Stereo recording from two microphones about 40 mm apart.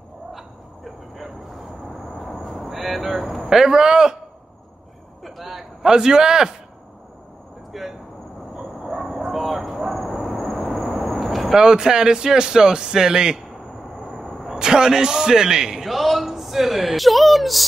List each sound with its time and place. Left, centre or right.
0.3 s a sound: centre
2.1 s vehicle: centre
3.4 s speech: centre
5.2 s a sound: centre
7.7 s vehicle: centre
9.2 s a sound: centre
11.1 s vehicle: centre
11.5 s speech: centre
14.0 s arrow: centre
14.5 s a man's voice: centre
15.8 s speech: centre